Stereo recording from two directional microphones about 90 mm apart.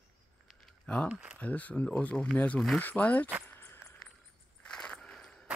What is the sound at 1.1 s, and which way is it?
Speech, 15° right (ahead or behind).